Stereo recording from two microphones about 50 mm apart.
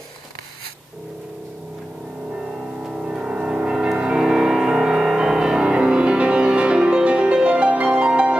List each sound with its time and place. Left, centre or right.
2.9 s music: centre